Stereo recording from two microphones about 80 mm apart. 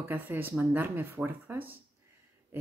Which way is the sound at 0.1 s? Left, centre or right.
Right.